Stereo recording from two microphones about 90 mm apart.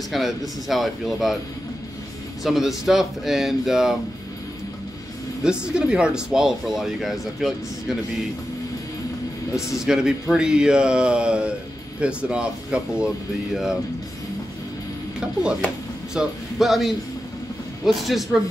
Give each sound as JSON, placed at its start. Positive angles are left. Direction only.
{"t": 0.1, "sound": "speech", "side_deg": 0}
{"t": 2.4, "sound": "speech", "side_deg": -5}
{"t": 5.4, "sound": "speech", "side_deg": -10}
{"t": 9.8, "sound": "speech", "side_deg": -10}
{"t": 16.2, "sound": "speech", "side_deg": -5}